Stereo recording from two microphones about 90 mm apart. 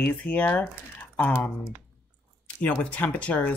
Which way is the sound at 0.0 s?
15° left (ahead or behind).